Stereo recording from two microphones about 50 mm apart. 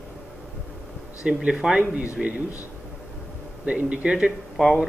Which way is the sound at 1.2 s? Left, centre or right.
Centre.